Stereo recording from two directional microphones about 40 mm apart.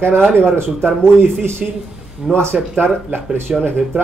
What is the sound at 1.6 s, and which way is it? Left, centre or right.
Speech, centre.